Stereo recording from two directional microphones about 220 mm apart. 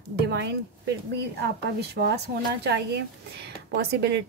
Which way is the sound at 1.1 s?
50° right (ahead or behind).